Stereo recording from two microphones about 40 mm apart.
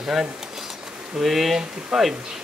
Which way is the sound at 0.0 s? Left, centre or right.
Centre.